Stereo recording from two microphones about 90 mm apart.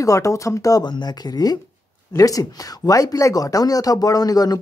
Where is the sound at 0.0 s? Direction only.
35° left (ahead or behind).